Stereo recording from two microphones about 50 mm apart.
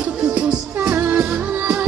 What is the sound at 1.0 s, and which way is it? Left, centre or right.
Music, right.